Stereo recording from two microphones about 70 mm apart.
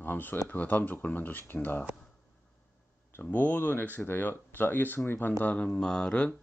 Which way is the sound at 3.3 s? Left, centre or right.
Left.